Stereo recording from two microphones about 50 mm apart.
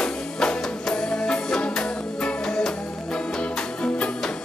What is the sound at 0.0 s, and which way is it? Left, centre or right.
Music, centre.